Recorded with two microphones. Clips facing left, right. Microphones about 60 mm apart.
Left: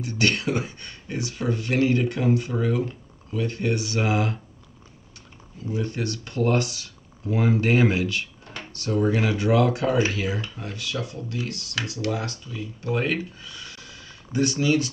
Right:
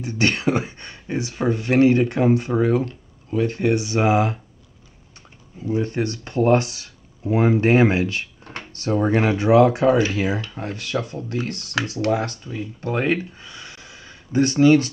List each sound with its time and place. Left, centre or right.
0.0 s speech: right
5.6 s speech: right